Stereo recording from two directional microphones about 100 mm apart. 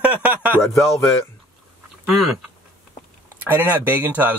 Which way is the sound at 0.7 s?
30° left (ahead or behind).